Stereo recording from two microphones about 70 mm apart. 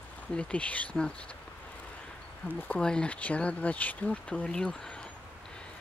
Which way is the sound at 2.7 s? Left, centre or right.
Centre.